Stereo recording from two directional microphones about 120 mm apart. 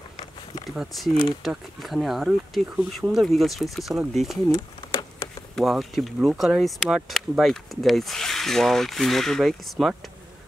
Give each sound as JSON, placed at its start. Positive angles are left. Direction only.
{"t": 0.7, "sound": "speech", "side_deg": 0}
{"t": 5.6, "sound": "speech", "side_deg": 0}